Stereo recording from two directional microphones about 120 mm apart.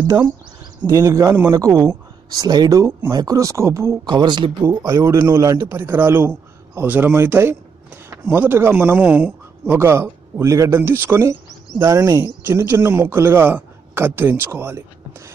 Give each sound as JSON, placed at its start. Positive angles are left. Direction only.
{"t": 0.8, "sound": "speech", "side_deg": -30}
{"t": 4.9, "sound": "speech", "side_deg": -20}